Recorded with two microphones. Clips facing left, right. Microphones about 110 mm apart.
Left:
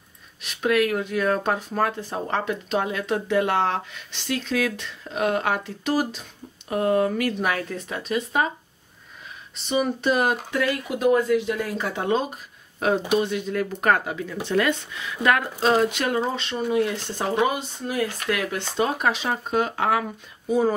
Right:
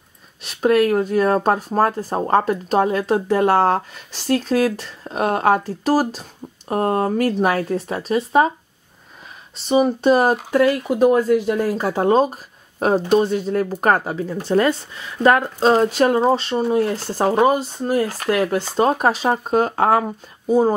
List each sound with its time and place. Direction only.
0.4 s speech: 35° right (ahead or behind)
9.7 s speech: 35° right (ahead or behind)